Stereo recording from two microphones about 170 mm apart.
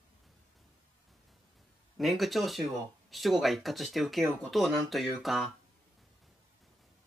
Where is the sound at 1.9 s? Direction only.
Centre (ahead or behind).